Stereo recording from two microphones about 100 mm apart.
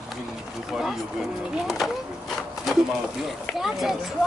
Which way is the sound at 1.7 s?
Centre (ahead or behind).